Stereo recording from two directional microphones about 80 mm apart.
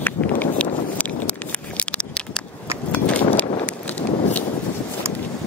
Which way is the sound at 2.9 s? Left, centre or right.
Centre.